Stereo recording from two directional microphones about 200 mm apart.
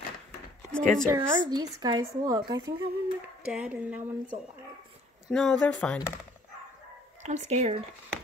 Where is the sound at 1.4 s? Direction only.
20° right (ahead or behind).